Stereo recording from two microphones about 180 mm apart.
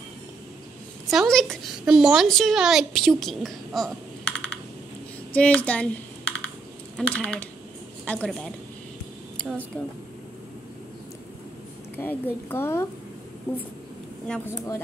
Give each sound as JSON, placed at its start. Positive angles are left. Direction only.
{"t": 1.1, "sound": "a woman's voice", "side_deg": 0}
{"t": 5.3, "sound": "a woman's voice", "side_deg": 10}
{"t": 9.7, "sound": "speech", "side_deg": 10}
{"t": 12.0, "sound": "speech", "side_deg": 10}
{"t": 14.2, "sound": "a woman's voice", "side_deg": 5}